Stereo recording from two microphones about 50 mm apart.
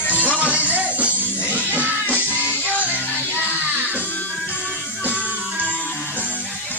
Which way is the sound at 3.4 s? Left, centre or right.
Right.